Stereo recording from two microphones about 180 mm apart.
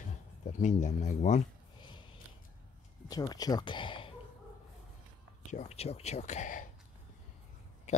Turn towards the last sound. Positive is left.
turn(degrees=45)  # may be behind; listen again after turning